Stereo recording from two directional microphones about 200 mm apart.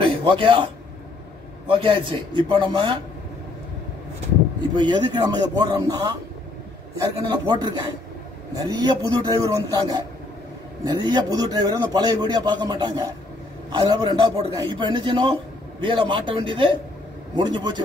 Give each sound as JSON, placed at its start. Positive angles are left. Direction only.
{"t": 0.0, "sound": "a man's voice", "side_deg": -25}
{"t": 1.7, "sound": "a man's voice", "side_deg": -25}
{"t": 4.7, "sound": "a man's voice", "side_deg": -20}
{"t": 7.2, "sound": "a man's voice", "side_deg": -20}
{"t": 8.7, "sound": "a man's voice", "side_deg": -20}